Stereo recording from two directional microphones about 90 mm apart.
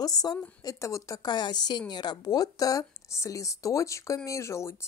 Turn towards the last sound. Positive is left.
turn(degrees=30)  # may be behind; listen again after turning